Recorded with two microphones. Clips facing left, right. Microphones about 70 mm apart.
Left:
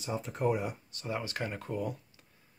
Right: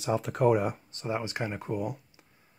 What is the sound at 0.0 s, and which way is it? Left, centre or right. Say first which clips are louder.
Speech: right 6 dB; right.